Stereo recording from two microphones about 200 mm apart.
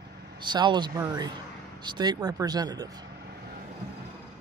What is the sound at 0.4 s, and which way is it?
Speech, 25° right (ahead or behind).